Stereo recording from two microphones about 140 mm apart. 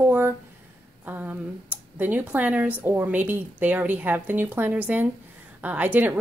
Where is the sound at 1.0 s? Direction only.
15° right (ahead or behind).